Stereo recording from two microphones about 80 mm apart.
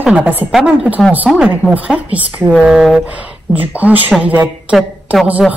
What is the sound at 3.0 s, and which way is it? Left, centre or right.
Speech, centre.